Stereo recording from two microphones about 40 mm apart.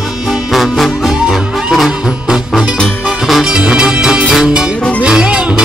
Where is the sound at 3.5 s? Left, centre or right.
Right.